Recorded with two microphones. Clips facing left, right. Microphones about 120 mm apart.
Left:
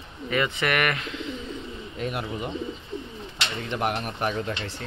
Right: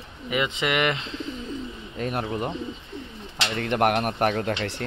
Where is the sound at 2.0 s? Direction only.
45° right (ahead or behind).